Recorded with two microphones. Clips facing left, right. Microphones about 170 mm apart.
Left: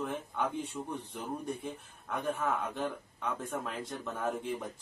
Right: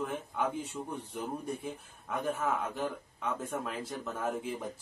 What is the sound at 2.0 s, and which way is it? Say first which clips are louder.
Speech: right 1 dB; centre (ahead or behind).